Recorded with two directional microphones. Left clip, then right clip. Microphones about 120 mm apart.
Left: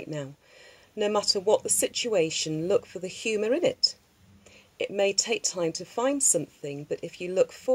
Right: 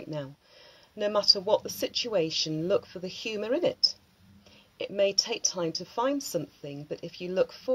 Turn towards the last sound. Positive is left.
turn(degrees=35)  # may be behind; listen again after turning